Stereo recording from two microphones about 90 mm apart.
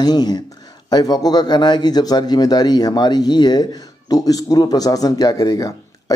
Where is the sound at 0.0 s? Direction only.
50° left (ahead or behind).